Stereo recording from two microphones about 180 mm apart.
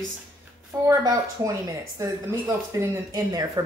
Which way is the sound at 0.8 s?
20° right (ahead or behind).